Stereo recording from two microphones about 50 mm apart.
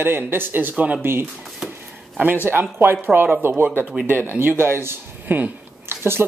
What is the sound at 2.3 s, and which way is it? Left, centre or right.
Speech, right.